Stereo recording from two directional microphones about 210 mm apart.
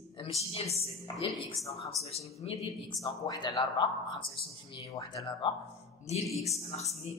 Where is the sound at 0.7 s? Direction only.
30° left (ahead or behind).